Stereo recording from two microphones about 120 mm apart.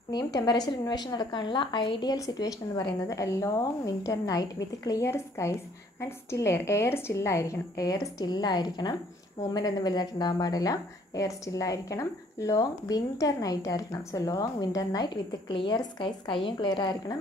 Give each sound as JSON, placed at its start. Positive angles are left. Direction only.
{"t": 0.1, "sound": "a woman's voice", "side_deg": 30}